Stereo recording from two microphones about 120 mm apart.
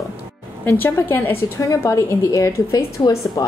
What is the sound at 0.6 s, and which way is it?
A woman's voice, 15° left (ahead or behind).